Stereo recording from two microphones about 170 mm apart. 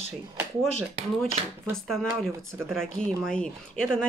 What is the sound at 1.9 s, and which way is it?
Speech, centre (ahead or behind).